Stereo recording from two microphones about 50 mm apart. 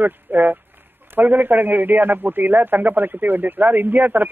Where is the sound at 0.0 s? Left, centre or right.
Right.